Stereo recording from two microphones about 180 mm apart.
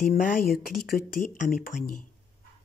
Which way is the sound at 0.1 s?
50° left (ahead or behind).